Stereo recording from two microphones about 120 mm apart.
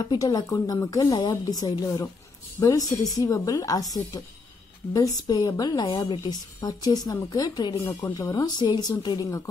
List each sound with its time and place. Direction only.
0.0 s speech: 30° left (ahead or behind)
6.6 s speech: 30° left (ahead or behind)